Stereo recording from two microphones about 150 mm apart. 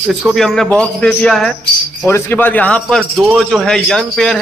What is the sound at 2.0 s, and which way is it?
A man's voice, 15° left (ahead or behind).